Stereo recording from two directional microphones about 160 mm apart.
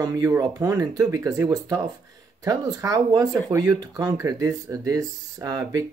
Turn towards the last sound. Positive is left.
turn(degrees=-20)  # may be behind; listen again after turning